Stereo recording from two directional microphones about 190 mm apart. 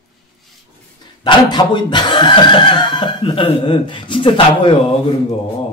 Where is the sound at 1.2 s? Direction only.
25° left (ahead or behind).